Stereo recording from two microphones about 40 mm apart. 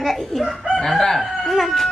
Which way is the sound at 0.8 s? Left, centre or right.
Centre.